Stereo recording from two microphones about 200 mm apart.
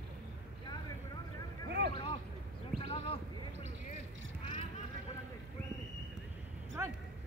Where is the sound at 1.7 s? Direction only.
55° right (ahead or behind).